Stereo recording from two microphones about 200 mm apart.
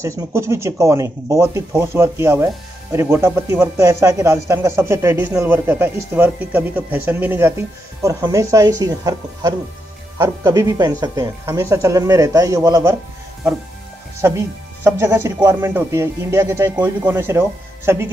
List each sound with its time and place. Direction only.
0.3 s speech: 15° right (ahead or behind)
14.2 s speech: 15° right (ahead or behind)